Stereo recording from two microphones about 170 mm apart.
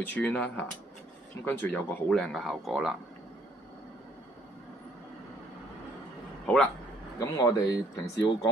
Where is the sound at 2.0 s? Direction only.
Centre (ahead or behind).